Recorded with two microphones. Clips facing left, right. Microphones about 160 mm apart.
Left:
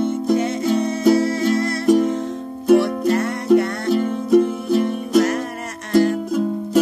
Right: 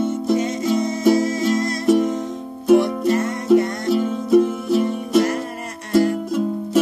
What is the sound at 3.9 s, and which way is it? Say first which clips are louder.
Music: even; centre (ahead or behind).